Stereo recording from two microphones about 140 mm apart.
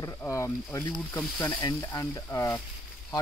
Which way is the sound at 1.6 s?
25° left (ahead or behind).